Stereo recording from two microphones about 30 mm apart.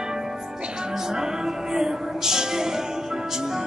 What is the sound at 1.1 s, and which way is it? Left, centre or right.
Music, right.